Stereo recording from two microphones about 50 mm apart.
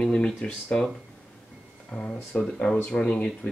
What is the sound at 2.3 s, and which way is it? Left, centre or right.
Speech, left.